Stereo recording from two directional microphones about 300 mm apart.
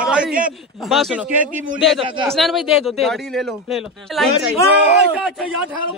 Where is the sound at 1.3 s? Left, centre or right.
Right.